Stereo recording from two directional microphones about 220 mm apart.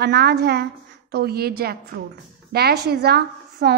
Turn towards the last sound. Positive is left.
turn(degrees=-45)  # may be behind; listen again after turning